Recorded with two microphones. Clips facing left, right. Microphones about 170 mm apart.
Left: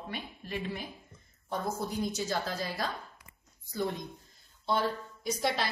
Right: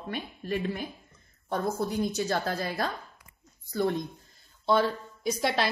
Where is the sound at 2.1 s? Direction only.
60° right (ahead or behind).